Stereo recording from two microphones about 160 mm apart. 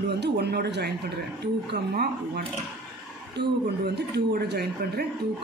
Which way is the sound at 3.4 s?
90° right.